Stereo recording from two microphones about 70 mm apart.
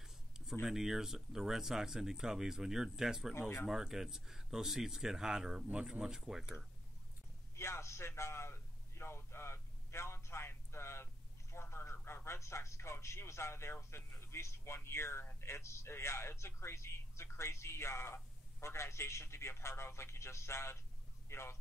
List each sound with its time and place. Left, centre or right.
0.0 s a sound: centre
0.7 s speech: centre
3.3 s speech: left
3.6 s speech: centre
7.5 s a sound: left
11.5 s speech: left